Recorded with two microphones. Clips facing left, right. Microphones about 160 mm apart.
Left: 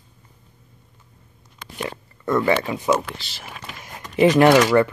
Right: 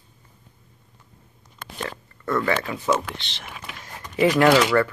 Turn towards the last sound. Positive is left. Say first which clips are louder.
# left 3 dB
turn(degrees=20)  # may be behind; listen again after turning